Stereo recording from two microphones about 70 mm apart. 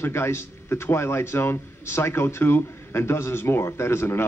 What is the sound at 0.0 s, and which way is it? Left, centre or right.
A man's voice, left.